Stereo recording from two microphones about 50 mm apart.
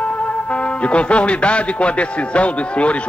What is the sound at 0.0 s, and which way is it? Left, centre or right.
A man's voice, left.